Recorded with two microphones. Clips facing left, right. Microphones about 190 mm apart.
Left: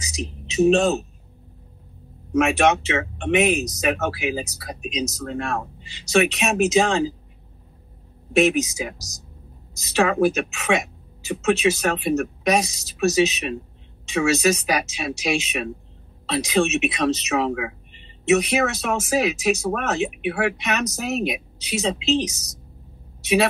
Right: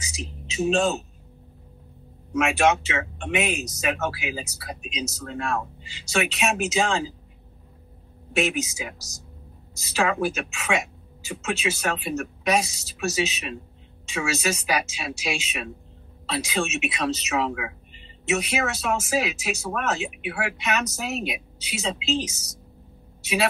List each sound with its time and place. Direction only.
0.0 s music: 40° left (ahead or behind)
2.3 s speech: 40° left (ahead or behind)
8.4 s speech: 40° left (ahead or behind)